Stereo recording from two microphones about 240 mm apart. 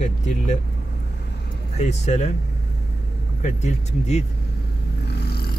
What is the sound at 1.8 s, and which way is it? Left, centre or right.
Speech, left.